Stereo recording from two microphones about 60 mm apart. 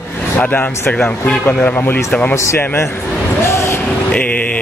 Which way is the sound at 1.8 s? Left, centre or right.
Left.